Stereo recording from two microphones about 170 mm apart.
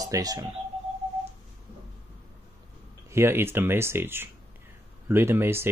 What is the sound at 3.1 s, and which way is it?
Speech, 15° right (ahead or behind).